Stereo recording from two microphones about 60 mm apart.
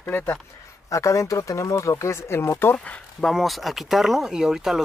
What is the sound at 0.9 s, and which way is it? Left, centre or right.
Speech, left.